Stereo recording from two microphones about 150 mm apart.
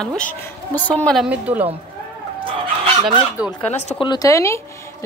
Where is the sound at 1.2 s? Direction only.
10° right (ahead or behind).